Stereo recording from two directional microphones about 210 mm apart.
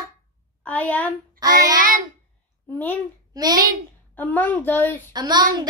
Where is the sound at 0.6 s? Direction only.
5° left (ahead or behind).